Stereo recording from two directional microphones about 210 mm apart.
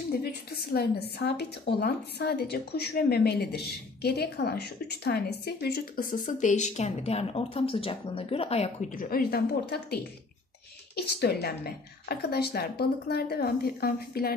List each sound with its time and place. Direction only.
0.2 s a woman's voice: 50° left (ahead or behind)
11.0 s a woman's voice: 50° left (ahead or behind)